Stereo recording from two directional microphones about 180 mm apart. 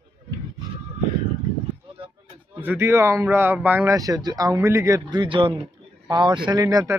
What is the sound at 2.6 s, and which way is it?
Speech, 10° right (ahead or behind).